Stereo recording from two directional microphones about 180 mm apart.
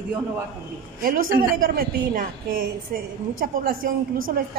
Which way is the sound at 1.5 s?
50° right (ahead or behind).